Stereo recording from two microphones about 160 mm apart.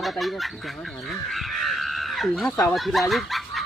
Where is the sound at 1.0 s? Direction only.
Centre (ahead or behind).